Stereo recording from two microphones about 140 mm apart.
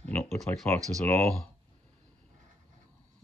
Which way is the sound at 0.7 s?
15° left (ahead or behind).